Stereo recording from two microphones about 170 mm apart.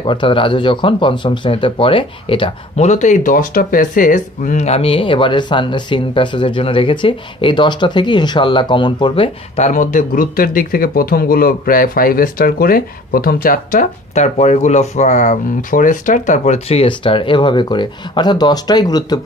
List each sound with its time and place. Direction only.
0.0 s speech: 30° left (ahead or behind)
2.9 s speech: 45° left (ahead or behind)
9.7 s speech: 50° left (ahead or behind); by 19.1 s 25° left (ahead or behind)